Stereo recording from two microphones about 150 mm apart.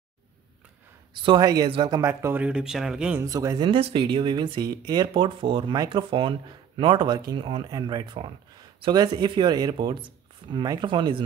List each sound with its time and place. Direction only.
1.1 s speech: 30° right (ahead or behind)
2.0 s speech: 15° right (ahead or behind)
3.2 s speech: 20° right (ahead or behind)